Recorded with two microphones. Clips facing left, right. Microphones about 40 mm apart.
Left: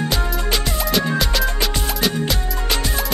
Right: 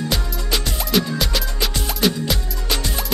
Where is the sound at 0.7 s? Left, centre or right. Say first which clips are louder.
Even; centre.